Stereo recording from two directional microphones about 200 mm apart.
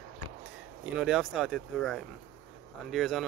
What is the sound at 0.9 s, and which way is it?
Speech, 5° right (ahead or behind).